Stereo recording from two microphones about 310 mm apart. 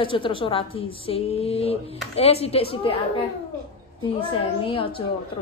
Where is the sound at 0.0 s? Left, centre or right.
Centre.